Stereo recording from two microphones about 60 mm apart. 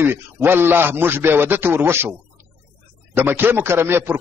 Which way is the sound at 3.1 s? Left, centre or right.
Right.